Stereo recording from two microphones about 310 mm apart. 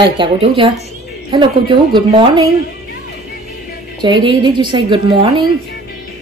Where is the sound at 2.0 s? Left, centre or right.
Centre.